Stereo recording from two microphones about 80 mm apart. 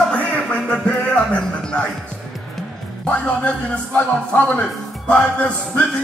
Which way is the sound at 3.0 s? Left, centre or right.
Centre.